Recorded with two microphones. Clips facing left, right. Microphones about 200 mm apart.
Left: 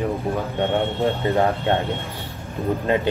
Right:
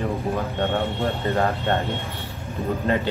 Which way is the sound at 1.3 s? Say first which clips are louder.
Left 2 dB; 15° left (ahead or behind).